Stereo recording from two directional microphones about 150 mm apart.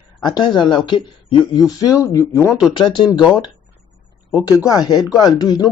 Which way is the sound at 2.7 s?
35° left (ahead or behind).